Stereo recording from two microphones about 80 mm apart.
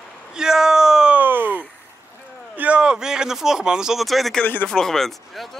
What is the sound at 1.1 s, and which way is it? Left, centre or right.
Speech, right.